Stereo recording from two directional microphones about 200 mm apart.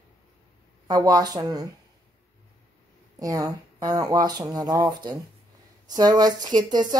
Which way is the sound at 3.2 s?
15° right (ahead or behind).